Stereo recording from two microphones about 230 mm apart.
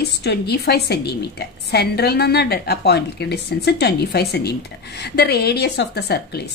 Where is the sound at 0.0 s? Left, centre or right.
Left.